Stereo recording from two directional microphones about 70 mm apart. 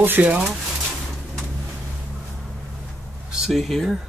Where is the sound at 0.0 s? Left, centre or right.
Right.